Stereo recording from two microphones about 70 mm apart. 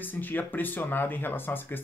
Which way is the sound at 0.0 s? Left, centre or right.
Left.